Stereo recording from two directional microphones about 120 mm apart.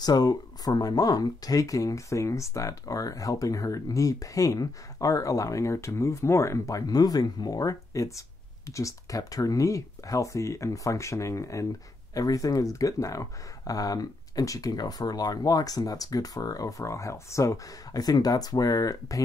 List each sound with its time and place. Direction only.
0.0 s speech: 35° left (ahead or behind)